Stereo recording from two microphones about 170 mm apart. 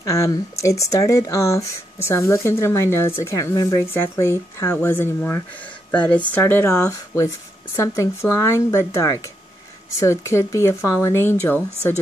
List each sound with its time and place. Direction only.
0.0 s speech: 20° left (ahead or behind)